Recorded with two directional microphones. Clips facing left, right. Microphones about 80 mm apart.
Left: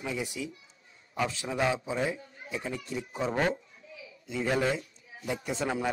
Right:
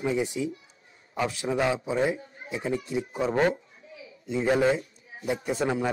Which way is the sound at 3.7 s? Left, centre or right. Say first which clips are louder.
Right 2 dB; right.